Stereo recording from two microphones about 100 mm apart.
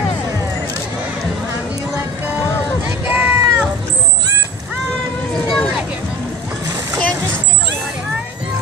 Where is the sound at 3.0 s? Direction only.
20° right (ahead or behind).